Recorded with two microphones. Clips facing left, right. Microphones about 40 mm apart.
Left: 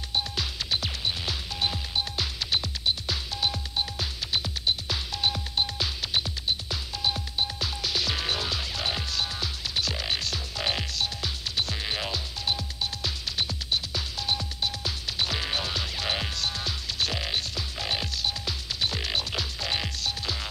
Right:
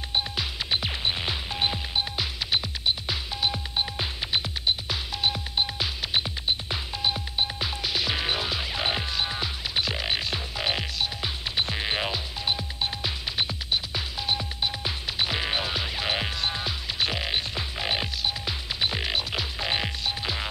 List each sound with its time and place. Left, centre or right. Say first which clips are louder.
0.1 s music: right 1 dB; right